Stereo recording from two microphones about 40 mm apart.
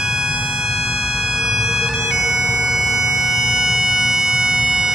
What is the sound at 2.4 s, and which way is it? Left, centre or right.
Music, right.